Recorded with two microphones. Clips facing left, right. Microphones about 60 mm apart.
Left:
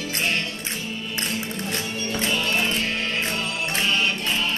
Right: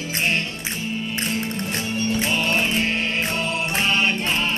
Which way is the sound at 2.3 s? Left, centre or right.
Right.